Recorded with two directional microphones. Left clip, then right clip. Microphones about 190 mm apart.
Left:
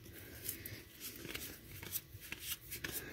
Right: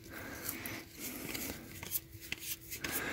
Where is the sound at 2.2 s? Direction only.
Centre (ahead or behind).